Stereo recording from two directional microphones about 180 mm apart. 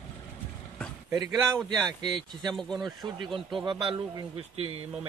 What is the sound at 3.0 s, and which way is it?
Speech, 25° right (ahead or behind).